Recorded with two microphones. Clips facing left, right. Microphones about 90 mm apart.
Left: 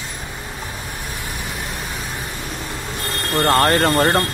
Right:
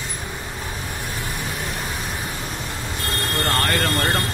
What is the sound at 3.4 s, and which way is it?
Speech, 35° left (ahead or behind).